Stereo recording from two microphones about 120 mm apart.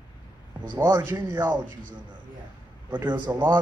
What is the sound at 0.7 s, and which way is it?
Speech, 20° right (ahead or behind).